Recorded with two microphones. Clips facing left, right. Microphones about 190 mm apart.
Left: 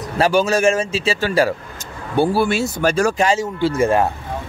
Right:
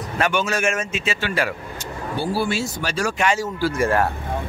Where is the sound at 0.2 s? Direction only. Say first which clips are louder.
Left 6 dB; 35° left (ahead or behind).